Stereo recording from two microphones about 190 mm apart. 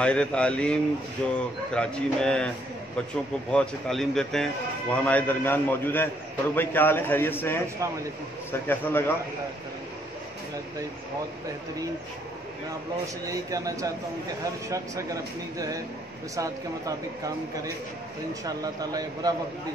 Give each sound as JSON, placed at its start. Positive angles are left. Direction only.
{"t": 0.0, "sound": "a man's voice", "side_deg": 5}
{"t": 3.5, "sound": "a man's voice", "side_deg": 0}
{"t": 13.3, "sound": "speech", "side_deg": -20}
{"t": 18.4, "sound": "speech", "side_deg": -20}